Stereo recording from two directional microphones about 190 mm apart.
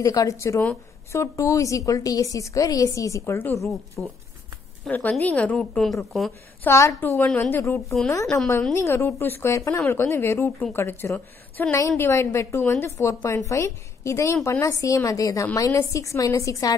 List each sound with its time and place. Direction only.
0.0 s a woman's voice: 15° left (ahead or behind); by 6.3 s centre (ahead or behind)
6.6 s speech: 15° left (ahead or behind)